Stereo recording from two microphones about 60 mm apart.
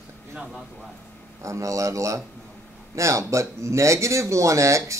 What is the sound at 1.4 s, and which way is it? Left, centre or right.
Speech, right.